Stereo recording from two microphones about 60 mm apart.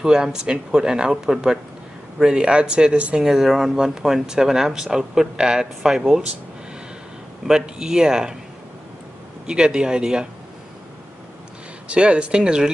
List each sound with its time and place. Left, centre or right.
0.0 s speech: centre
3.3 s speech: centre
7.4 s speech: centre
9.5 s speech: centre
11.9 s speech: centre